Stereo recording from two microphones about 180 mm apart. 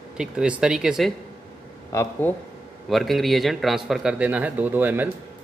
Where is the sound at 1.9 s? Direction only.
15° left (ahead or behind).